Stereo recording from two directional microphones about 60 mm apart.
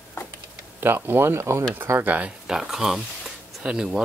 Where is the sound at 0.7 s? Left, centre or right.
Right.